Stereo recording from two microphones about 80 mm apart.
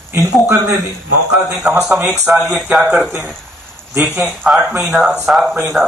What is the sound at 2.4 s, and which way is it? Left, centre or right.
A man's voice, centre.